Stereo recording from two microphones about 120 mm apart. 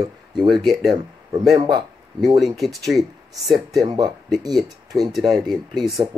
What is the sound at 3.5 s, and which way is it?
Speech, 35° right (ahead or behind).